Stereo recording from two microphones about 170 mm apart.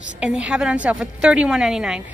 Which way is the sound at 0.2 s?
5° right (ahead or behind).